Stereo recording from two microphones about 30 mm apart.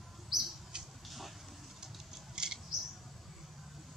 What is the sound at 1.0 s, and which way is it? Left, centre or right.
Vehicle, centre.